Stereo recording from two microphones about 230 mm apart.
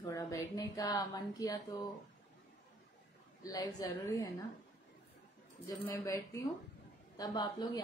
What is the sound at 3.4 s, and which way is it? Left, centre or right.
Speech, centre.